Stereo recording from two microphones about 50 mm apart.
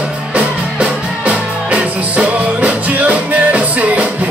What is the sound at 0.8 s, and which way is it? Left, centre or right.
Music, right.